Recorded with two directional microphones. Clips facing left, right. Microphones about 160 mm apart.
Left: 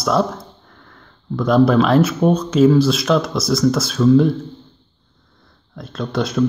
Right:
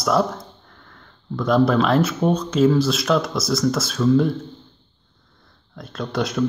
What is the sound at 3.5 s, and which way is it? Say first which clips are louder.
Speech: left 5 dB; 15° left (ahead or behind).